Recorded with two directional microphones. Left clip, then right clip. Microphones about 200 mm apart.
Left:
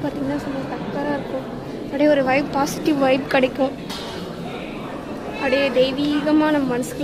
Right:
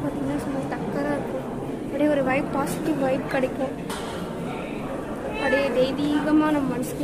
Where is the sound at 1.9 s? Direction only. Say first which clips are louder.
Left 5 dB; 30° left (ahead or behind).